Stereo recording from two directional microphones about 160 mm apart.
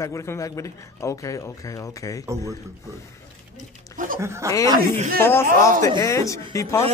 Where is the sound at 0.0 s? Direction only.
20° left (ahead or behind).